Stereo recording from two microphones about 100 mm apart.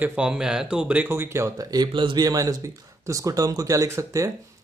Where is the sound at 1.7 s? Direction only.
50° right (ahead or behind).